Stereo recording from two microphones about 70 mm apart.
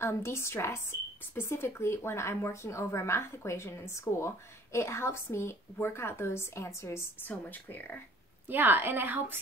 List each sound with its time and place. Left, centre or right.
0.0 s a woman's voice: left
7.2 s speech: left
8.5 s a woman's voice: right